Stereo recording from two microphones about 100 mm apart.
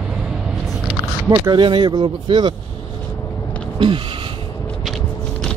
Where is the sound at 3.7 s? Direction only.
55° right (ahead or behind).